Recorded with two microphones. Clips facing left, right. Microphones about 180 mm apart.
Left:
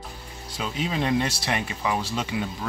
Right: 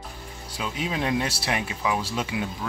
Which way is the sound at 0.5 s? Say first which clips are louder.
Left 1 dB; 5° right (ahead or behind).